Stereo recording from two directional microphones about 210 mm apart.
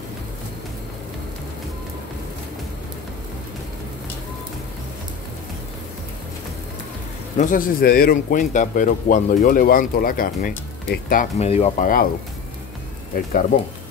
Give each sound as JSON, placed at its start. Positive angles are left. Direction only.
{"t": 7.3, "sound": "speech", "side_deg": 40}
{"t": 13.1, "sound": "speech", "side_deg": 45}